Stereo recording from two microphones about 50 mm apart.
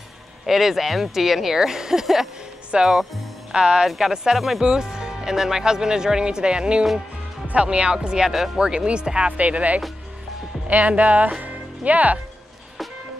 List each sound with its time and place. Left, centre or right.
0.5 s speech: centre; by 12.2 s right